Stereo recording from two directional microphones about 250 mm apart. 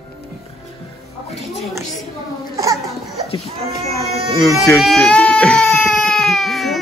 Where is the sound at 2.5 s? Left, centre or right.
Centre.